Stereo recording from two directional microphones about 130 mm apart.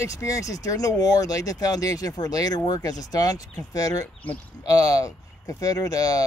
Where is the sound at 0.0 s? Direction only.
25° left (ahead or behind).